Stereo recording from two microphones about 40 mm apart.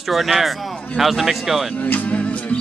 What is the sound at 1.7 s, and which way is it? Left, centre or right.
Music, left.